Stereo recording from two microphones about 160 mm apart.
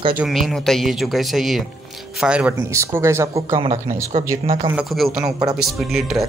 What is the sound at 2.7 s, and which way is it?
Speech, 15° right (ahead or behind).